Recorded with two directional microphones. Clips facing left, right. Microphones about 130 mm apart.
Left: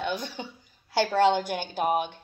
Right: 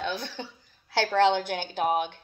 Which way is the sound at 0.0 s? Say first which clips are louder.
Left 1 dB; 15° left (ahead or behind).